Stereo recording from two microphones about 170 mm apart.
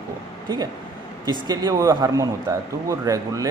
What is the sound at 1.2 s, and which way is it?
Speech, 25° right (ahead or behind).